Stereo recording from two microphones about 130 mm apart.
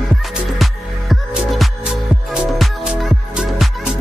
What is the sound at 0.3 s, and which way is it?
Music, 5° right (ahead or behind).